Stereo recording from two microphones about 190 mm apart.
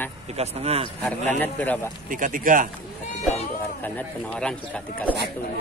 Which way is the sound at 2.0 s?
45° right (ahead or behind).